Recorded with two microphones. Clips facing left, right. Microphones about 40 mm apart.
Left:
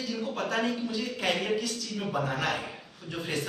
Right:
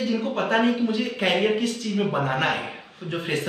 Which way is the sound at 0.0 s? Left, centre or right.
Right.